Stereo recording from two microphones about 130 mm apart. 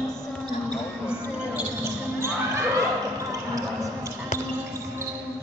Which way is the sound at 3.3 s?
25° right (ahead or behind).